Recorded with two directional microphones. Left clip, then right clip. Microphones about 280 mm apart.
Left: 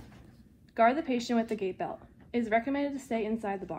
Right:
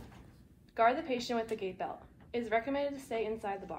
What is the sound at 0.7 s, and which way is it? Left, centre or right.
A woman's voice, left.